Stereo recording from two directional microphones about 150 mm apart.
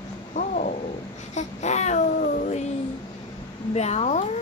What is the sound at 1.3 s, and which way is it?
Speech, 50° left (ahead or behind).